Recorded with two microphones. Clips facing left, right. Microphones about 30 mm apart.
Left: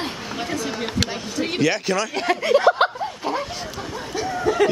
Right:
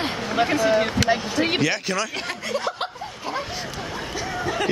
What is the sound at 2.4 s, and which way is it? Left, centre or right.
Speech, left.